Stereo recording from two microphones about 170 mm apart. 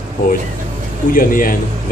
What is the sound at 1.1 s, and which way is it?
Speech, 55° left (ahead or behind).